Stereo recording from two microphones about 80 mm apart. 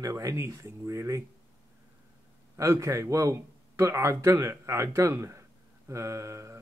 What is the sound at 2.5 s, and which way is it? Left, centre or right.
A man's voice, right.